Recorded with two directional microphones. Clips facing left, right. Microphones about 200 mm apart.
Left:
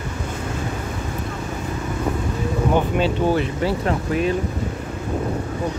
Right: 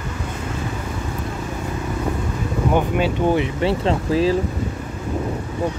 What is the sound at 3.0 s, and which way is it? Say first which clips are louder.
Speech: right 1 dB; 20° right (ahead or behind).